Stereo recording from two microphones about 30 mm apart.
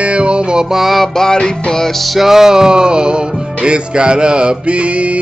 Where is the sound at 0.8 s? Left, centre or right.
Centre.